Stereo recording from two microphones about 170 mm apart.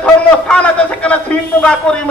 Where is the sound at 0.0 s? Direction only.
5° left (ahead or behind).